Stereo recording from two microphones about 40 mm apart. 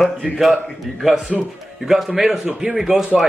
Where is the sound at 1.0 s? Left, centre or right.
Centre.